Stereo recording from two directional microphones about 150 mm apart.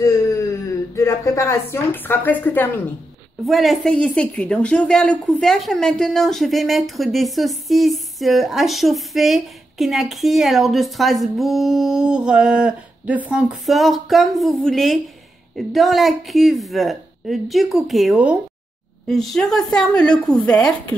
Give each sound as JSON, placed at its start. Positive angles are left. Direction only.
{"t": 0.0, "sound": "speech", "side_deg": 20}
{"t": 3.4, "sound": "a woman's voice", "side_deg": 0}